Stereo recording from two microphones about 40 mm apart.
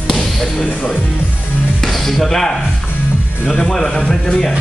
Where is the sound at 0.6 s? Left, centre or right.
Left.